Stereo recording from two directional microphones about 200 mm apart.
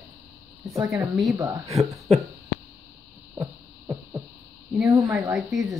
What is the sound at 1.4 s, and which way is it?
Speech, 15° right (ahead or behind).